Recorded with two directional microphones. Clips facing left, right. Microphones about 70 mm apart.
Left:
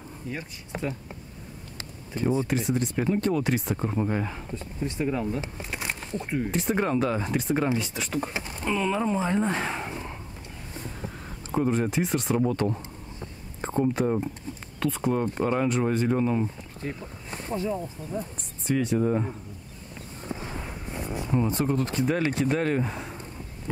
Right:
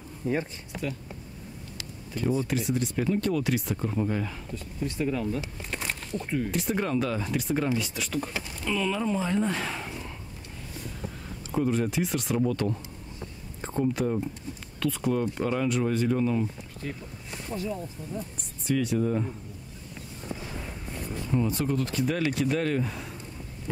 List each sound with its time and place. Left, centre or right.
0.2 s speech: right
0.7 s speech: left
5.6 s speech: centre; by 10.1 s left
10.7 s vehicle: left
11.5 s speech: left
13.2 s a sound: left
14.8 s speech: left
20.2 s a sound: left
21.5 s speech: left